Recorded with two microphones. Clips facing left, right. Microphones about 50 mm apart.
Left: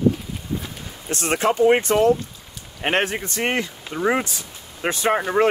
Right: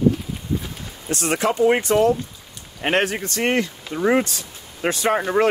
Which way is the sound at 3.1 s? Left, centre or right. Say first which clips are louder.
Right 2 dB; centre.